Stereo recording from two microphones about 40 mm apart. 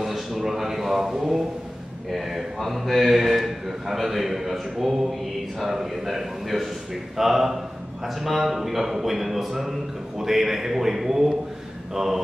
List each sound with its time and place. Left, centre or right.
0.0 s a man's voice: centre